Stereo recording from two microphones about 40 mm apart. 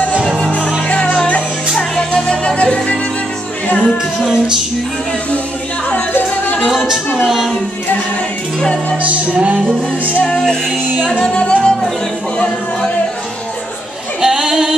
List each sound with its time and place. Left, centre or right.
0.8 s music: left
4.2 s music: centre
7.2 s child singing: centre
8.9 s music: right
10.4 s music: centre
14.2 s female singing: centre